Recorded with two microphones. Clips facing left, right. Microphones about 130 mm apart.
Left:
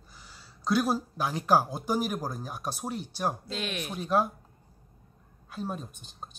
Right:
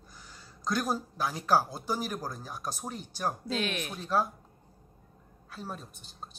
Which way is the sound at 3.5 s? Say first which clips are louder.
Right 2 dB; centre (ahead or behind).